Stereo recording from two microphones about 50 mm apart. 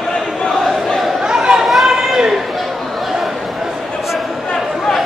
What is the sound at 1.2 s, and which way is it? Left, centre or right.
Chatter, centre.